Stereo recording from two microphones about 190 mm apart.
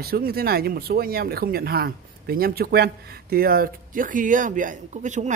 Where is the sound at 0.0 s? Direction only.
55° right (ahead or behind).